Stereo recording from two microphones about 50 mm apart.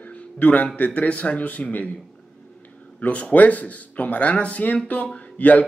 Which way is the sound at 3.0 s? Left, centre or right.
Left.